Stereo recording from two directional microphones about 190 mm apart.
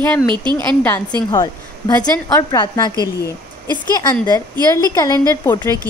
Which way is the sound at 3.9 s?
20° left (ahead or behind).